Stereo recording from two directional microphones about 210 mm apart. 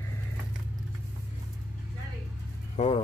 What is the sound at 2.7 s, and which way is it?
Speech, 25° left (ahead or behind).